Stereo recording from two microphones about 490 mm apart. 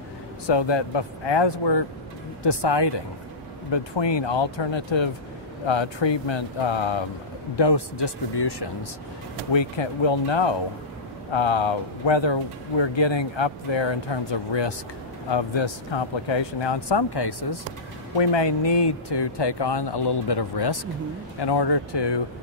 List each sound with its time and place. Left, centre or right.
0.5 s speech: left
7.5 s speech: left
9.5 s speech: left